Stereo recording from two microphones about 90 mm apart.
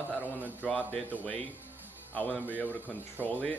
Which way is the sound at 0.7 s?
10° left (ahead or behind).